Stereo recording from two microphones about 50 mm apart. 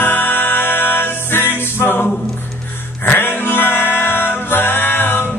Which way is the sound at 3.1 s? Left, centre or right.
Left.